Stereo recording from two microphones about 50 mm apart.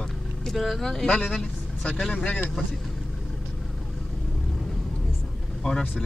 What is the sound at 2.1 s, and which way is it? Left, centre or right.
Speech, left.